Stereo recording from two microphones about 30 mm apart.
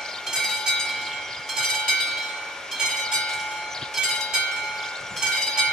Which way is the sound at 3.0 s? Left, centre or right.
Left.